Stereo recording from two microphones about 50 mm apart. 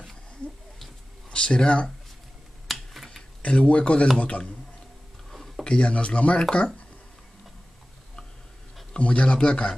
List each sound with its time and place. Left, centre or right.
1.3 s speech: centre
2.7 s a sound: centre
3.4 s speech: left
5.6 s speech: left
8.9 s speech: left